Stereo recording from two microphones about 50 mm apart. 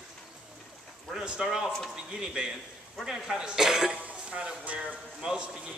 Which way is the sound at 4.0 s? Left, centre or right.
Right.